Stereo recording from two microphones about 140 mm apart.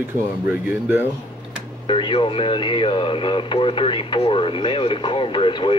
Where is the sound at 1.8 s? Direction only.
40° left (ahead or behind).